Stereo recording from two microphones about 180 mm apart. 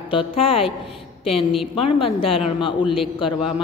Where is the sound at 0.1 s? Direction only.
30° left (ahead or behind).